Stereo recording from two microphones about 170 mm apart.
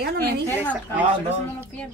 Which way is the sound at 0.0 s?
65° right (ahead or behind).